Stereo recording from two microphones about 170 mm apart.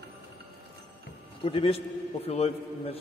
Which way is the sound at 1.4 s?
35° left (ahead or behind).